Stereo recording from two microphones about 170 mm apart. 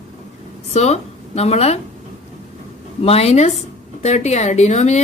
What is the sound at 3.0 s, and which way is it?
Speech, 35° left (ahead or behind).